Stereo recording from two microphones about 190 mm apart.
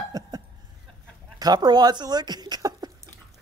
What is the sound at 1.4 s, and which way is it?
Speech, 20° right (ahead or behind).